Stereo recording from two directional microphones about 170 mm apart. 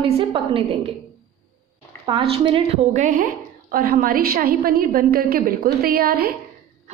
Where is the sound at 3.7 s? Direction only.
55° right (ahead or behind).